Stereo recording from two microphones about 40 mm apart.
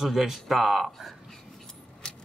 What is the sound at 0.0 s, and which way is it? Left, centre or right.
Speech, centre.